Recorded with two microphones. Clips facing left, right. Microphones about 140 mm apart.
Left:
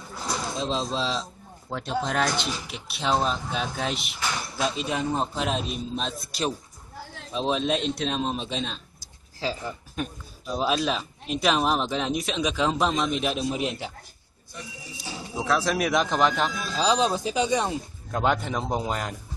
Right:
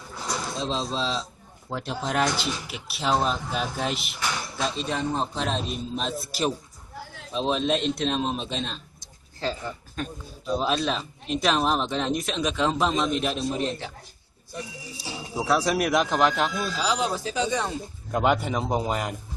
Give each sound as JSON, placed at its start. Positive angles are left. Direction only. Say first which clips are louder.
{"t": 0.3, "sound": "a man's voice", "louder": "left 1 dB", "side_deg": 0}
{"t": 15.3, "sound": "a man's voice", "louder": "right 1 dB", "side_deg": -10}
{"t": 16.7, "sound": "speech", "louder": "left 3 dB", "side_deg": 25}
{"t": 18.1, "sound": "a man's voice", "louder": "right 2 dB", "side_deg": -5}